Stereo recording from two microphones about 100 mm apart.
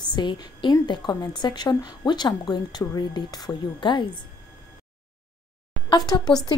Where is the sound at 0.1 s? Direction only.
50° left (ahead or behind).